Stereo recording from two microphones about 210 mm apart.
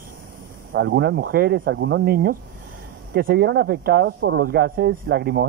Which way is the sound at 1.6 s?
65° right (ahead or behind).